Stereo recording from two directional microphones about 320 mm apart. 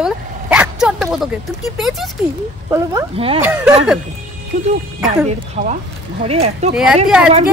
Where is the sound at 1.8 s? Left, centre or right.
Centre.